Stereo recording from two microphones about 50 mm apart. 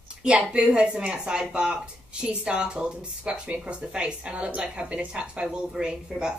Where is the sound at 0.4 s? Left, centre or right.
Centre.